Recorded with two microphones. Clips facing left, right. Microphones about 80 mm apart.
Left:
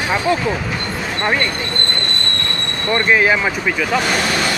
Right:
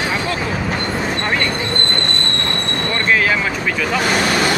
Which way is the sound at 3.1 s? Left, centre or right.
Centre.